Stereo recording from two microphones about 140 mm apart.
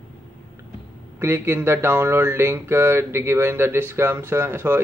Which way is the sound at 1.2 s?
20° right (ahead or behind).